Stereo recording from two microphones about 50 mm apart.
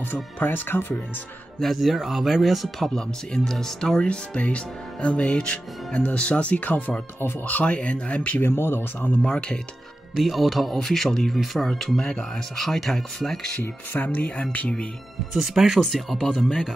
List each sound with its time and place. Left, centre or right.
0.1 s speech: left
1.6 s speech: centre; by 8.4 s left
8.4 s speech: left
9.2 s speech: centre
10.1 s speech: centre
13.6 s speech: left
15.3 s speech: centre